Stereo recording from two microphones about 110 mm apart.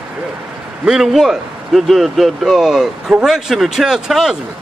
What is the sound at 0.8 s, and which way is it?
A man's voice, 5° right (ahead or behind).